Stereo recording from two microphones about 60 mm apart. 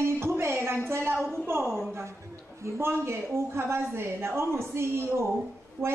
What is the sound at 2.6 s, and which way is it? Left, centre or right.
A woman's voice, right.